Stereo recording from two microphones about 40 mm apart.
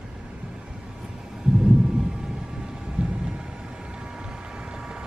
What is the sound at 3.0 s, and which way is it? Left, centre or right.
Thunder, right.